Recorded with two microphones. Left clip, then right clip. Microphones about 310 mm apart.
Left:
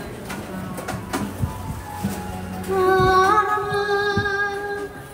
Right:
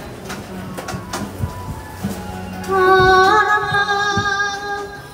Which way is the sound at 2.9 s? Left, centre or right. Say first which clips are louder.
Right 5 dB; right.